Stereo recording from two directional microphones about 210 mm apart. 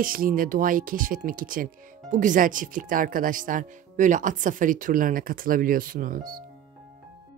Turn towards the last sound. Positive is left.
turn(degrees=-40)  # may be behind; listen again after turning